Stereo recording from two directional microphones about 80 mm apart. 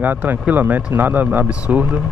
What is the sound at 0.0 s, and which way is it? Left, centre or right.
Speech, right.